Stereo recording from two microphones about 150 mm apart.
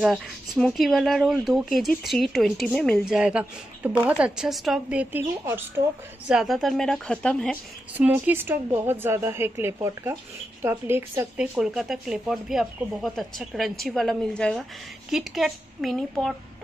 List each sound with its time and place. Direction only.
0.0 s a woman's voice: centre (ahead or behind)
6.2 s speech: 5° right (ahead or behind)
7.9 s a woman's voice: 10° right (ahead or behind)